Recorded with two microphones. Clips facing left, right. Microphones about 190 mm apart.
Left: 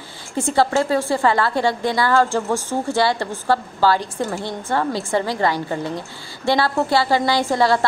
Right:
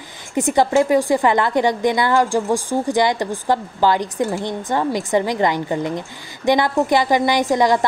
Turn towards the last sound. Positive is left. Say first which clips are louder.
# right 1 dB
turn(degrees=-15)  # may be behind; listen again after turning